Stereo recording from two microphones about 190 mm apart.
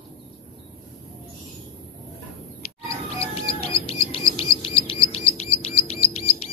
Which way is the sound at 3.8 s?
30° left (ahead or behind).